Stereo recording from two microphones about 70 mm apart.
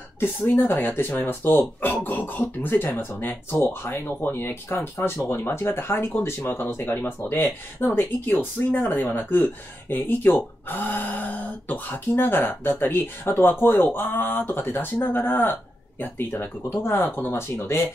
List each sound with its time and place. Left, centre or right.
0.6 s speech: left